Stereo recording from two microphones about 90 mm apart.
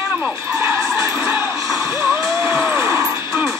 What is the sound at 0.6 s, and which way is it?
Skidding, 35° right (ahead or behind).